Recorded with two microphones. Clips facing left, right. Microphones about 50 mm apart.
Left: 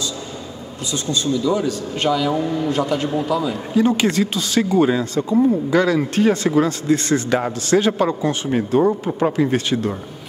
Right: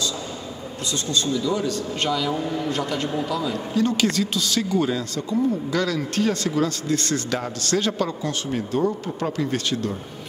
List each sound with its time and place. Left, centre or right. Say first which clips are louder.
0.9 s a man's voice: left 3 dB; centre
8.5 s speech: left 7 dB; left
9.0 s a man's voice: left 7 dB; left